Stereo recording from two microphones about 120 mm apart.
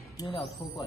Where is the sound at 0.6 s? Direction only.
40° left (ahead or behind).